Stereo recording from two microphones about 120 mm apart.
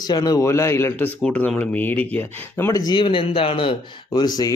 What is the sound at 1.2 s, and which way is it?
Speech, 10° left (ahead or behind).